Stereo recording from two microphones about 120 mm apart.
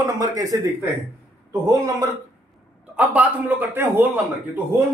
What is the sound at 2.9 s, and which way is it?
A man's voice, 10° right (ahead or behind).